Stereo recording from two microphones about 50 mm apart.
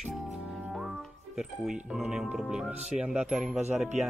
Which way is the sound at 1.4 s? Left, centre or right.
Centre.